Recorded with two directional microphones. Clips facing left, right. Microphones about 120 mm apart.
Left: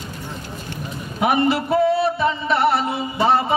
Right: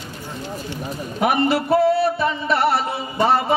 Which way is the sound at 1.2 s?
40° right (ahead or behind).